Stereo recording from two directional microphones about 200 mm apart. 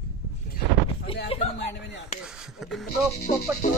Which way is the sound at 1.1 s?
30° left (ahead or behind).